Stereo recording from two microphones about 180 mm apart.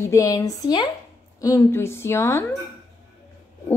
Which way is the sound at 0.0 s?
15° left (ahead or behind).